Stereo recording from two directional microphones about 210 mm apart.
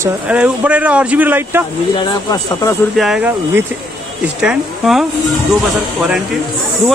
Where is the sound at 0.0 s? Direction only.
5° right (ahead or behind).